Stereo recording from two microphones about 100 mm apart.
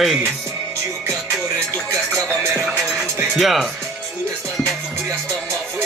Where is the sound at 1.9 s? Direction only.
35° right (ahead or behind).